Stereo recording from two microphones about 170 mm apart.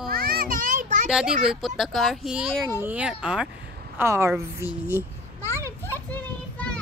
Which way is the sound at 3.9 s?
15° right (ahead or behind).